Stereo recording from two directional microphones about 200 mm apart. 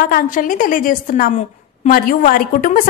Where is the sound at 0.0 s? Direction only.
45° left (ahead or behind).